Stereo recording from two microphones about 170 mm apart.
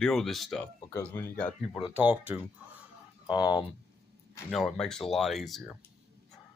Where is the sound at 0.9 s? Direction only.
15° left (ahead or behind).